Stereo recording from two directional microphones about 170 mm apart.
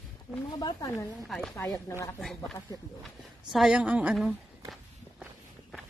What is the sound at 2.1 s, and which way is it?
A woman's voice, centre (ahead or behind).